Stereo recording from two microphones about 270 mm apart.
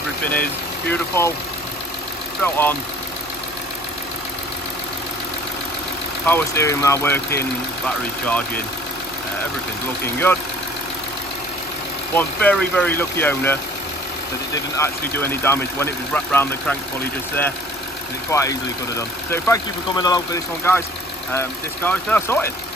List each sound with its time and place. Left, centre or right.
0.3 s speech: centre
2.4 s speech: centre
6.2 s speech: centre
10.0 s speech: centre
12.2 s speech: centre
21.3 s speech: centre